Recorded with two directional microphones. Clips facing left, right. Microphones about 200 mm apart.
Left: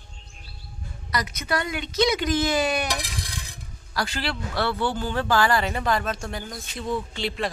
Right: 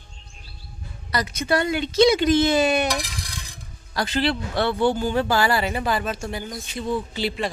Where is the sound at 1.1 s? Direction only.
30° right (ahead or behind).